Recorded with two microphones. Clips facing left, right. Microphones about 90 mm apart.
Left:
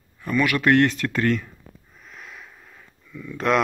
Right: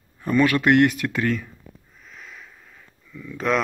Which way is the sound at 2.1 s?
10° left (ahead or behind).